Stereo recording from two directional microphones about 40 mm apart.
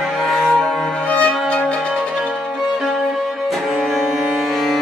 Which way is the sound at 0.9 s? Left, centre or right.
Left.